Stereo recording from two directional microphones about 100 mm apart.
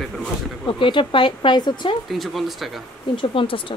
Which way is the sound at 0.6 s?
55° left (ahead or behind).